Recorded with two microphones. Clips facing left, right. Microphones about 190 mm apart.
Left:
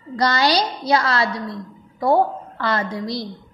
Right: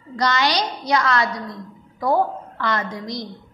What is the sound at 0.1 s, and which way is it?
A woman's voice, 35° left (ahead or behind).